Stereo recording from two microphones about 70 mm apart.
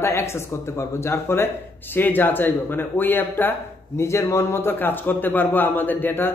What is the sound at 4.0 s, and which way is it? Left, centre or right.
A man's voice, left.